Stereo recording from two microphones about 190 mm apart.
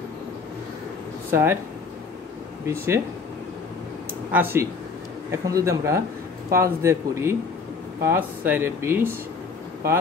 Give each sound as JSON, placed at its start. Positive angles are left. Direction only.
{"t": 1.3, "sound": "speech", "side_deg": -10}
{"t": 2.7, "sound": "speech", "side_deg": -15}
{"t": 4.3, "sound": "speech", "side_deg": -10}